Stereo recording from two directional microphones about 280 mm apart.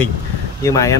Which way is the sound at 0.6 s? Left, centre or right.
Centre.